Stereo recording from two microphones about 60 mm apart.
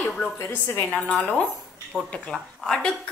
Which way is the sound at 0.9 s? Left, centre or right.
Left.